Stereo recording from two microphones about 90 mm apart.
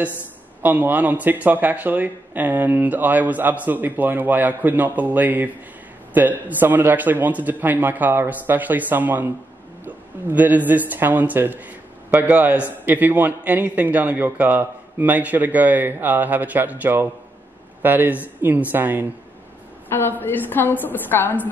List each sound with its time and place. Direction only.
0.6 s speech: 20° right (ahead or behind)
19.9 s a woman's voice: 25° left (ahead or behind)